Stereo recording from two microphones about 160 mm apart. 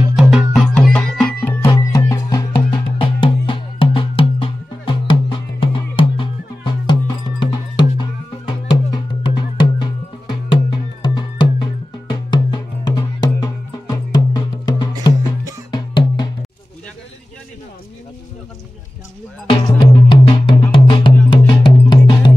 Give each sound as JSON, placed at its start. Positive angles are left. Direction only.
{"t": 0.1, "sound": "music", "side_deg": -5}
{"t": 1.7, "sound": "music", "side_deg": 25}
{"t": 19.6, "sound": "music", "side_deg": 25}